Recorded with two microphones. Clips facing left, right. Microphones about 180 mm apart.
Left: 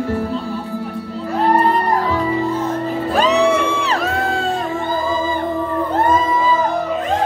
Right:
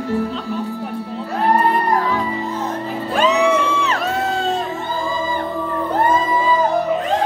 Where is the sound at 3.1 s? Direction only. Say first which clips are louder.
Left 1 dB; 35° left (ahead or behind).